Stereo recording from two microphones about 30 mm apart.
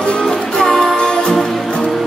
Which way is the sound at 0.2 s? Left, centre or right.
Left.